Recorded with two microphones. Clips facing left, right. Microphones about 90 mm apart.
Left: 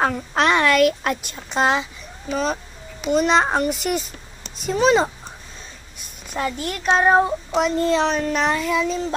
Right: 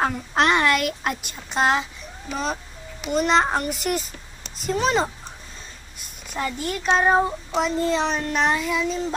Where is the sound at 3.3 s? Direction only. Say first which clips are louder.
Left 2 dB; 5° left (ahead or behind).